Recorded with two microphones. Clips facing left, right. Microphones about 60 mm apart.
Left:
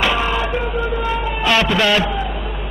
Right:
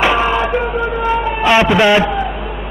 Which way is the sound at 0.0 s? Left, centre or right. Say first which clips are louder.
Right 5 dB; right.